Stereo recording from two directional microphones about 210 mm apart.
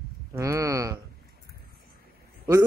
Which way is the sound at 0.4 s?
15° right (ahead or behind).